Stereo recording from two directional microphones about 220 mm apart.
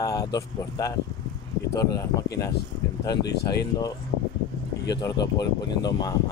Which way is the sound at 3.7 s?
20° left (ahead or behind).